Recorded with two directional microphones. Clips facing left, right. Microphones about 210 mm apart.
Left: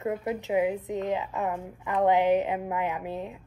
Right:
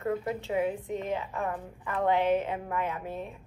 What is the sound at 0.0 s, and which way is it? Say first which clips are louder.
A woman's voice: left 1 dB; 20° left (ahead or behind).